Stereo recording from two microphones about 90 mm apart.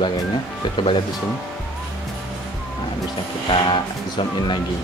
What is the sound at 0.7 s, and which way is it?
Vehicle, 70° left (ahead or behind).